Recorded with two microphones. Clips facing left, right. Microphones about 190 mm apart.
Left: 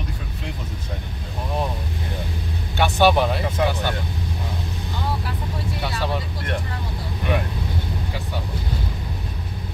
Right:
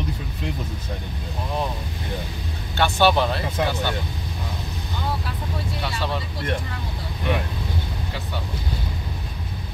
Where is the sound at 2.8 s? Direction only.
15° left (ahead or behind).